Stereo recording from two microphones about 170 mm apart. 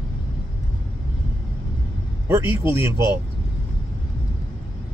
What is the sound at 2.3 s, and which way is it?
Speech, 15° right (ahead or behind).